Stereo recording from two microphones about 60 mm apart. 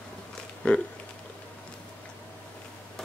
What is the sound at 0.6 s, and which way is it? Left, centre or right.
Speech, centre.